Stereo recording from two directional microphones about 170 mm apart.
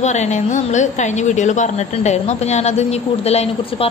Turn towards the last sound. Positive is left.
turn(degrees=35)  # may be behind; listen again after turning